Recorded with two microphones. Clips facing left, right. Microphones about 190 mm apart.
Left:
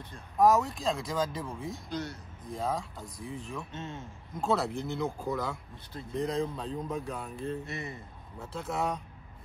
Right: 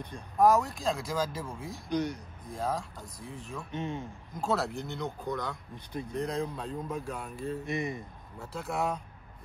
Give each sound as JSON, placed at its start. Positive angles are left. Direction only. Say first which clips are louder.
{"t": 0.4, "sound": "speech", "louder": "even", "side_deg": 0}
{"t": 1.9, "sound": "speech", "louder": "right 8 dB", "side_deg": -15}
{"t": 2.5, "sound": "speech", "louder": "even", "side_deg": 0}
{"t": 3.7, "sound": "speech", "louder": "right 5 dB", "side_deg": -15}
{"t": 4.4, "sound": "speech", "louder": "left 1 dB", "side_deg": 0}
{"t": 7.6, "sound": "speech", "louder": "right 6 dB", "side_deg": -15}
{"t": 8.4, "sound": "speech", "louder": "even", "side_deg": 0}